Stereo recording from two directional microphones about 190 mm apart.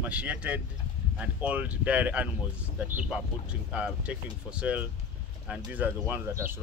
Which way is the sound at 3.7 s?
5° right (ahead or behind).